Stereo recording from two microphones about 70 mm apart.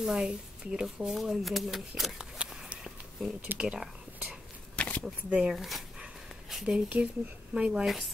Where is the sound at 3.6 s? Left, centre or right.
Centre.